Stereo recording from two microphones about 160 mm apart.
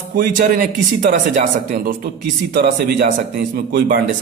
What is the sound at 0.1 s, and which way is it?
Speech, 60° right (ahead or behind).